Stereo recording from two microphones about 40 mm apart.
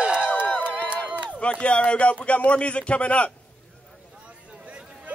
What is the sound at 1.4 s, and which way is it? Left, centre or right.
Speech, left.